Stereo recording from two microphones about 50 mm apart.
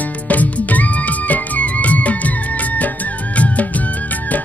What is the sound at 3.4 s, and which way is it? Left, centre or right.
Music of bollywood, left.